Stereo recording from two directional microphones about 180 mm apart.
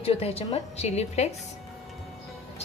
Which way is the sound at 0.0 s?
35° left (ahead or behind).